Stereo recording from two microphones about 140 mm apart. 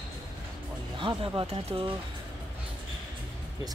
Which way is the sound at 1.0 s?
35° right (ahead or behind).